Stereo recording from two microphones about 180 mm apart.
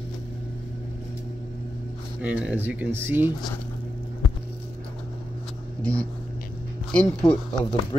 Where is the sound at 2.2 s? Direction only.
5° right (ahead or behind).